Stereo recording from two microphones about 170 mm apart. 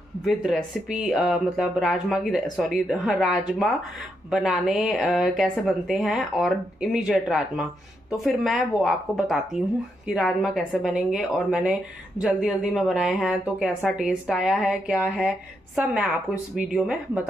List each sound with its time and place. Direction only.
0.2 s speech: centre (ahead or behind)